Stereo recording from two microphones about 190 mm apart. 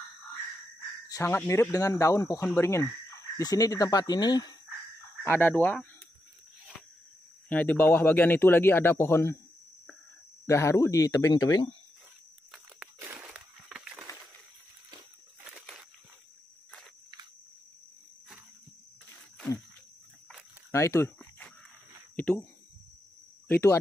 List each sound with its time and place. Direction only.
1.0 s speech: 15° left (ahead or behind)
7.4 s speech: 10° left (ahead or behind)
10.4 s speech: 15° left (ahead or behind)
12.4 s a sound: 5° right (ahead or behind)
20.7 s a sound: 15° left (ahead or behind)
23.5 s speech: 15° left (ahead or behind)